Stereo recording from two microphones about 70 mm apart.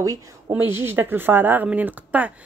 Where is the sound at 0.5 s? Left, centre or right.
Right.